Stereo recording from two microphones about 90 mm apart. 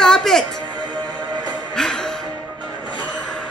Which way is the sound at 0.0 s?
5° left (ahead or behind).